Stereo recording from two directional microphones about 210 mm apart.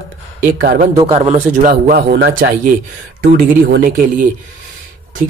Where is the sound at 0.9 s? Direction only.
25° right (ahead or behind); by 3.9 s 45° right (ahead or behind).